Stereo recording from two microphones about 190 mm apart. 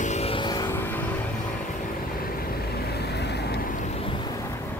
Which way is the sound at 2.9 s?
60° left (ahead or behind).